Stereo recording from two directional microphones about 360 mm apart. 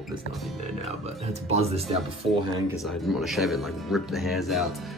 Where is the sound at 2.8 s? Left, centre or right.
Centre.